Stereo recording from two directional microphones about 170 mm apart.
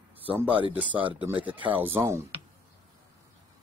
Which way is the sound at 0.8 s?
30° right (ahead or behind).